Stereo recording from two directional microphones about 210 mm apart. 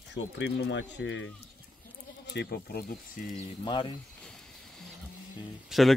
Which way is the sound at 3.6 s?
20° left (ahead or behind).